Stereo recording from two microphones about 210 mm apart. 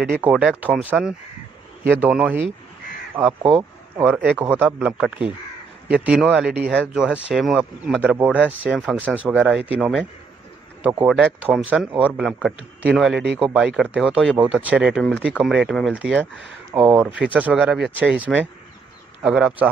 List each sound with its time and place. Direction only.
0.2 s speech: 5° right (ahead or behind)
11.1 s speech: 5° right (ahead or behind)